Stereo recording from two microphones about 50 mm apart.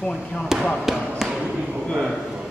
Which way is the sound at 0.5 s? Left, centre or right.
Centre.